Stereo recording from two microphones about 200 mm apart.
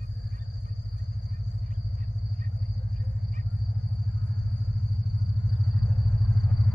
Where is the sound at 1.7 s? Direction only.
40° right (ahead or behind).